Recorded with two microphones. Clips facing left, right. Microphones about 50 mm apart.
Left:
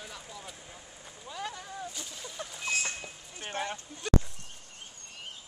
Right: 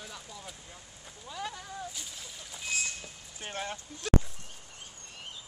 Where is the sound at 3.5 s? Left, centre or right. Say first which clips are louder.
Left 2 dB; centre.